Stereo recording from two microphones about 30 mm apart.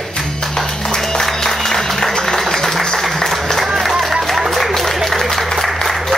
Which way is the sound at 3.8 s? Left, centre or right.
Centre.